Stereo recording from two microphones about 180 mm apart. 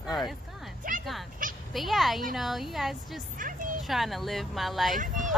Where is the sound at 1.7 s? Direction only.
Centre (ahead or behind).